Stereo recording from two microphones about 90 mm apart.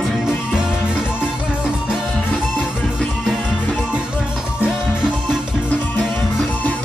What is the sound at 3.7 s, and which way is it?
Music, 10° right (ahead or behind).